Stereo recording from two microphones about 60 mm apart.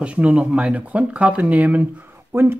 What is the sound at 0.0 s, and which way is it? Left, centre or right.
Speech, right.